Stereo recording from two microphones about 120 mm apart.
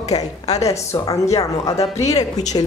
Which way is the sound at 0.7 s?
25° left (ahead or behind).